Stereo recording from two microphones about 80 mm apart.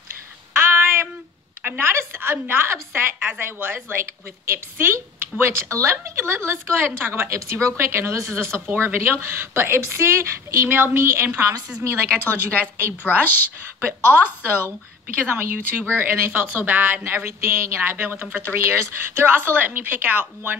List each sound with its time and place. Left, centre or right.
0.6 s child singing: right
1.6 s a woman's voice: right
13.2 s a woman's voice: left
13.7 s a woman's voice: right